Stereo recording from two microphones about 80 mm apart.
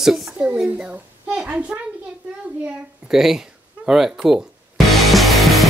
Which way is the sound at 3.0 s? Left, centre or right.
Centre.